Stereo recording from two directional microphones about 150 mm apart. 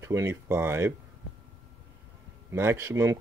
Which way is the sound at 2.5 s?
15° right (ahead or behind).